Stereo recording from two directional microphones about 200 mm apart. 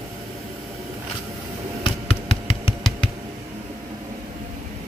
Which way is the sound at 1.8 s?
30° left (ahead or behind).